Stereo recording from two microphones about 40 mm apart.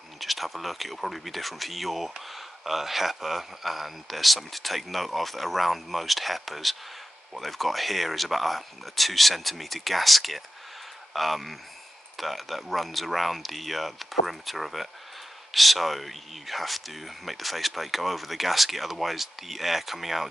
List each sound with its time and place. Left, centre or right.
0.2 s speech: centre